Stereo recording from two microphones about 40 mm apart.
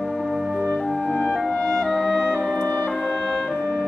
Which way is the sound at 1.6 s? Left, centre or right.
Centre.